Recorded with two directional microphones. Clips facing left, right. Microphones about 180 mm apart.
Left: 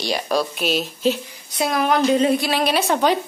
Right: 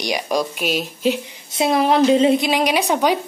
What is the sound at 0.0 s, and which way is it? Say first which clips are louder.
Speech: even; 15° right (ahead or behind).